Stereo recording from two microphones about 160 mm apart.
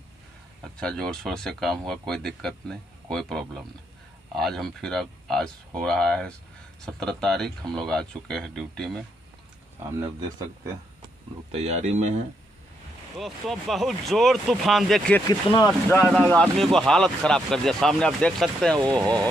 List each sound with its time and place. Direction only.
0.7 s speech: 5° left (ahead or behind)
11.5 s speech: 40° right (ahead or behind)
13.2 s speech: centre (ahead or behind)
15.2 s speech: 25° left (ahead or behind)
16.1 s speech: centre (ahead or behind)